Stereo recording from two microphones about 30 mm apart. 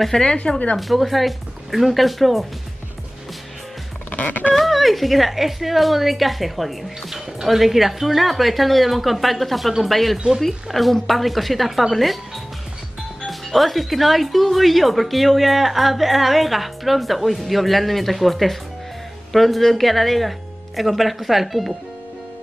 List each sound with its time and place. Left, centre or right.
0.1 s speech: left
0.7 s speech: centre
4.2 s a sound: left
4.6 s speech: centre
10.1 s speech: right
10.4 s speech: centre
13.3 s speech: centre